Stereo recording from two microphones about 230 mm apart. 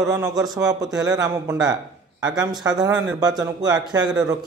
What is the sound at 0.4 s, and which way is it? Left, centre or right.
A man's voice, centre.